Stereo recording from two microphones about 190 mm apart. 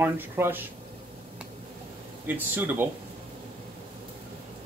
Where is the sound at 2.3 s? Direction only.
10° right (ahead or behind).